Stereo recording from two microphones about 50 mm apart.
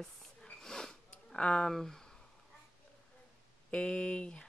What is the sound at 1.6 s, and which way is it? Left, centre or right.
Speech, centre.